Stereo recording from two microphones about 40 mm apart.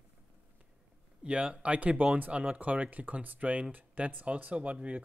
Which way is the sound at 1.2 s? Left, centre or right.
Right.